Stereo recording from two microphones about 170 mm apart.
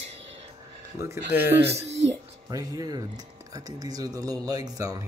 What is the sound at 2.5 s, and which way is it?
Speech, 20° right (ahead or behind).